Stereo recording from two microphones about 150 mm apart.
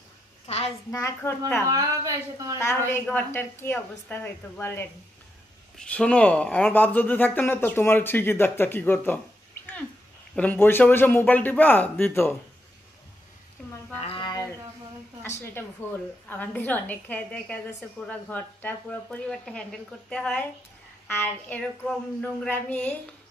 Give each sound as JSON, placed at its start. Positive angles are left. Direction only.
{"t": 0.5, "sound": "a child's voice", "side_deg": 45}
{"t": 0.9, "sound": "a woman's voice", "side_deg": 25}
{"t": 1.7, "sound": "speech", "side_deg": -25}
{"t": 2.6, "sound": "a woman's voice", "side_deg": 15}
{"t": 10.3, "sound": "a woman's voice", "side_deg": 10}
{"t": 13.6, "sound": "a sound", "side_deg": 5}
{"t": 13.9, "sound": "a sound", "side_deg": 40}
{"t": 15.2, "sound": "a woman's voice", "side_deg": 20}